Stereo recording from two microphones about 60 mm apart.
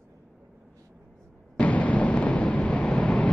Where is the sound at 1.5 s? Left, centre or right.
Left.